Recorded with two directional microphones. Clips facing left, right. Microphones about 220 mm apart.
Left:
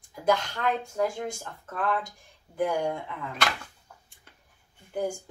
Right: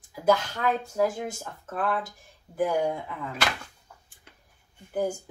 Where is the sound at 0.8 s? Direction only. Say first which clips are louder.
Right 2 dB; 5° right (ahead or behind).